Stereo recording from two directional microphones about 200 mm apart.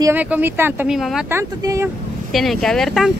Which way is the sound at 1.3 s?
15° right (ahead or behind).